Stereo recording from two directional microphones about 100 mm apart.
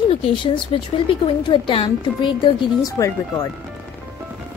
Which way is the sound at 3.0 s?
30° left (ahead or behind).